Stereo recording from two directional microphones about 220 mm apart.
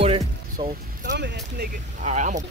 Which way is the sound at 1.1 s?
50° right (ahead or behind).